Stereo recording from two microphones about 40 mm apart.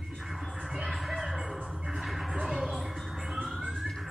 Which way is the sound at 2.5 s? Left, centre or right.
Centre.